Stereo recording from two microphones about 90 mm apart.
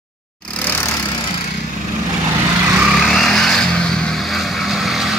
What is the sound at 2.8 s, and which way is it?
Vehicle, centre (ahead or behind).